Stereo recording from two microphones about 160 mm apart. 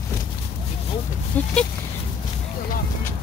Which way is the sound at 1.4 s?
10° left (ahead or behind).